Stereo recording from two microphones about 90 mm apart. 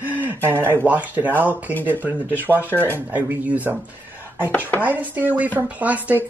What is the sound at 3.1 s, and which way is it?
Speech, 20° right (ahead or behind).